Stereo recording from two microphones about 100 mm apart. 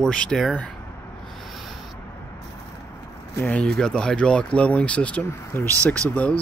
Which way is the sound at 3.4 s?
5° left (ahead or behind).